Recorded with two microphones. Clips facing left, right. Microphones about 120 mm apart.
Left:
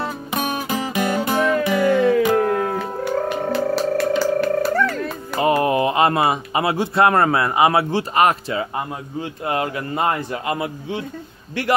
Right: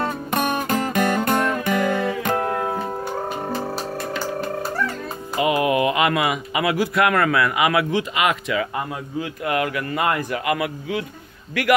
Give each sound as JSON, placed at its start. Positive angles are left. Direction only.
{"t": 0.6, "sound": "music", "side_deg": 5}
{"t": 3.5, "sound": "music", "side_deg": 75}
{"t": 5.4, "sound": "a man's voice", "side_deg": 35}